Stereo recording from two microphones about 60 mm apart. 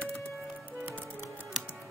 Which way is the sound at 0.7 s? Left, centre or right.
Right.